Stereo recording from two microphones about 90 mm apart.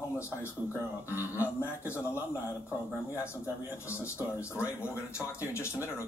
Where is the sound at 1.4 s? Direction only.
25° left (ahead or behind).